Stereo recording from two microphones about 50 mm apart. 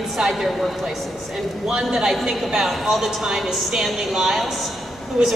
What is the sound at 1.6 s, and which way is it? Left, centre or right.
A woman's voice, centre.